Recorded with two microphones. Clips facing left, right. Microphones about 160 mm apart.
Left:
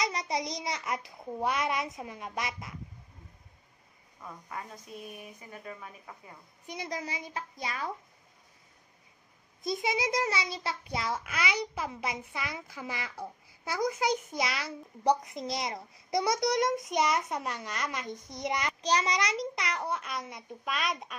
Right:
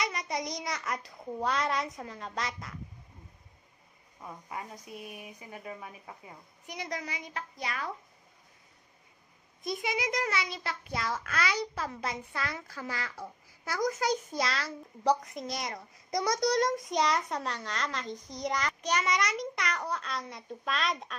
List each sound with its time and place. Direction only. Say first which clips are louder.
0.0 s a child's voice: left 2 dB; 30° left (ahead or behind)
0.9 s a child's voice: left 1 dB; 15° left (ahead or behind)
4.2 s a woman's voice: right 1 dB; 15° right (ahead or behind)
6.7 s a child's voice: left 1 dB; 25° left (ahead or behind)
9.7 s a child's voice: left 2 dB; 25° left (ahead or behind)
13.8 s a child's voice: even; 10° left (ahead or behind)
18.8 s a child's voice: left 2 dB; 35° left (ahead or behind); by 21.1 s 5° left (ahead or behind)